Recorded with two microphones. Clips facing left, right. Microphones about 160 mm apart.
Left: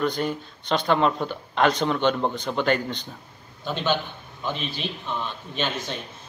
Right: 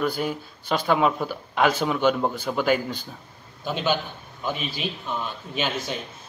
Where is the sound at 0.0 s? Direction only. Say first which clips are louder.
Even; 5° right (ahead or behind).